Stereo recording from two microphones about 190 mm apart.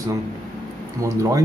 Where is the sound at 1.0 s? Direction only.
15° right (ahead or behind).